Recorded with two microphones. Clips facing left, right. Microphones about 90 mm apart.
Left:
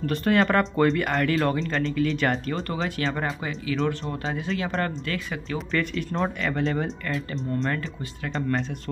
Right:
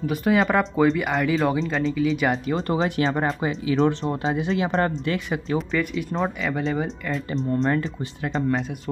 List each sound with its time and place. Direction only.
0.0 s speech: 5° right (ahead or behind)
2.7 s speech: 35° right (ahead or behind)
5.7 s speech: 5° right (ahead or behind)